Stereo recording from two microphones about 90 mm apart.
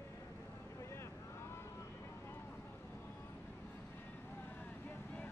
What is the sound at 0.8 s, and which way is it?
Boat, 30° left (ahead or behind).